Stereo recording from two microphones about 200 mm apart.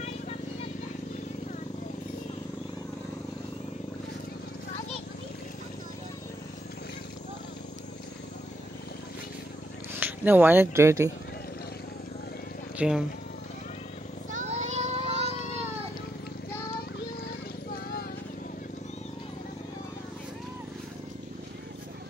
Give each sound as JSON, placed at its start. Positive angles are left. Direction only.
{"t": 9.9, "sound": "speech", "side_deg": -10}
{"t": 12.7, "sound": "speech", "side_deg": -5}
{"t": 14.3, "sound": "children playing", "side_deg": -35}